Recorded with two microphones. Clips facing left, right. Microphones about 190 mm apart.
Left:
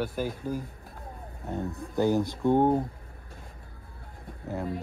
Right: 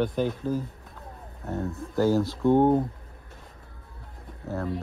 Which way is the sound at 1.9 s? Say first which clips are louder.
Right 2 dB; 20° left (ahead or behind).